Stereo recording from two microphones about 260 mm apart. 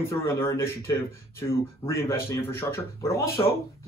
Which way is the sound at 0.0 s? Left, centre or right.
Centre.